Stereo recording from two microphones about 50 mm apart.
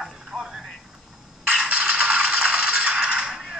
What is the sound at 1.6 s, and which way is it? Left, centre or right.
Music, right.